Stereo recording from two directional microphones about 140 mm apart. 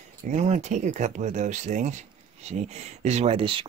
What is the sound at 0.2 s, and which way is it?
Speech, 60° right (ahead or behind).